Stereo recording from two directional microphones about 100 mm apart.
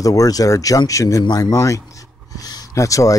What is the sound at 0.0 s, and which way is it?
Speech, 35° left (ahead or behind).